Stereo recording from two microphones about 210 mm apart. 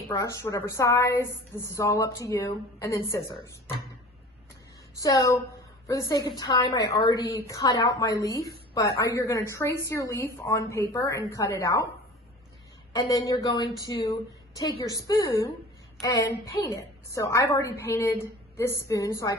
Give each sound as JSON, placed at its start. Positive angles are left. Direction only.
{"t": 0.1, "sound": "a woman's voice", "side_deg": 15}
{"t": 4.9, "sound": "a woman's voice", "side_deg": 15}
{"t": 12.9, "sound": "a woman's voice", "side_deg": 15}